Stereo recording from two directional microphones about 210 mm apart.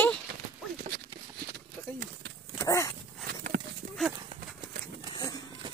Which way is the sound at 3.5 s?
40° right (ahead or behind).